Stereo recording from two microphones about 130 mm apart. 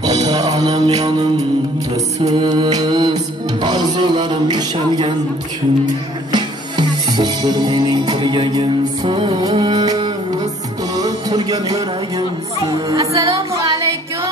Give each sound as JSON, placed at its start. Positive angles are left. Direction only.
{"t": 0.1, "sound": "music", "side_deg": -55}
{"t": 0.5, "sound": "music", "side_deg": -30}
{"t": 0.7, "sound": "mantra", "side_deg": -55}
{"t": 2.2, "sound": "music", "side_deg": -30}
{"t": 6.3, "sound": "music", "side_deg": -30}
{"t": 9.4, "sound": "music", "side_deg": -30}
{"t": 13.1, "sound": "music", "side_deg": -50}